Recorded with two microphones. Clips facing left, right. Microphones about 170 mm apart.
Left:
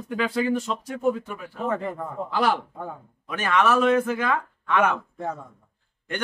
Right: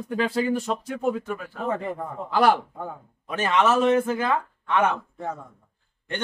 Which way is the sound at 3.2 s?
25° right (ahead or behind).